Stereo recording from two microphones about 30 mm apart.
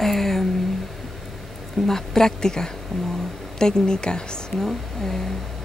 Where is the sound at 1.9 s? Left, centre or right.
Centre.